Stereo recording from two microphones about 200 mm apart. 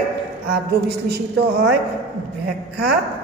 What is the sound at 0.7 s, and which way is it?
Speech, 55° right (ahead or behind).